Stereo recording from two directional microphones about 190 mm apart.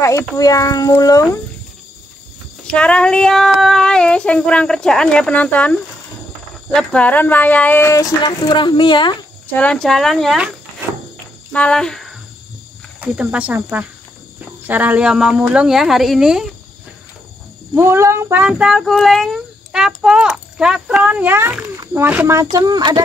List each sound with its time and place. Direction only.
0.4 s a child's voice: 20° left (ahead or behind)
2.7 s speech: 5° left (ahead or behind); by 9.1 s 25° left (ahead or behind)
9.5 s speech: 5° left (ahead or behind)
11.5 s speech: 5° left (ahead or behind)
17.7 s speech: 15° right (ahead or behind)